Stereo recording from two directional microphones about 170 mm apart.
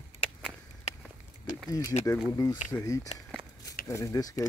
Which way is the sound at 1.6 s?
20° left (ahead or behind).